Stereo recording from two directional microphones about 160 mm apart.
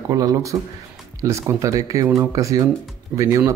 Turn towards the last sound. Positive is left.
turn(degrees=-15)  # may be behind; listen again after turning